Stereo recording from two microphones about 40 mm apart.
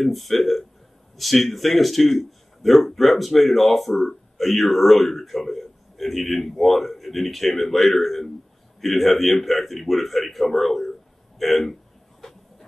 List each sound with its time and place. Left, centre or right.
0.0 s a man's voice: centre
12.2 s train: centre